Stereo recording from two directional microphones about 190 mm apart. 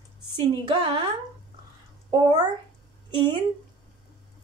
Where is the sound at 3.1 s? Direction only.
25° right (ahead or behind).